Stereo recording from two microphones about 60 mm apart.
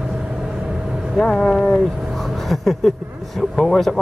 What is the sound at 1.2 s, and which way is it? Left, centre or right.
Speech, centre.